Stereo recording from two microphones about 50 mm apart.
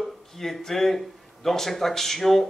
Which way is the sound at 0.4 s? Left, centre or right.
Centre.